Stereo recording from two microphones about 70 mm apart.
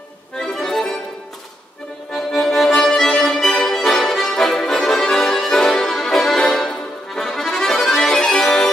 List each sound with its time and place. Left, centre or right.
0.4 s accordion: centre
2.1 s accordion: centre